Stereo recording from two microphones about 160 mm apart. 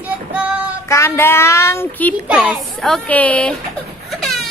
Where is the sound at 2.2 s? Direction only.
5° right (ahead or behind).